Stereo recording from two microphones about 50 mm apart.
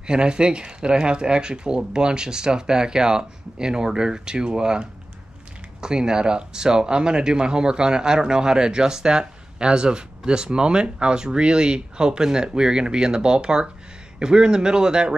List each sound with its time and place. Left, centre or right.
0.0 s speech: centre